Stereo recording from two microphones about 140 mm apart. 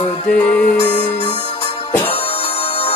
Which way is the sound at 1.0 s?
40° left (ahead or behind).